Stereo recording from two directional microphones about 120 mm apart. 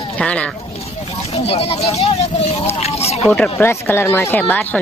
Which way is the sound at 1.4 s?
55° left (ahead or behind).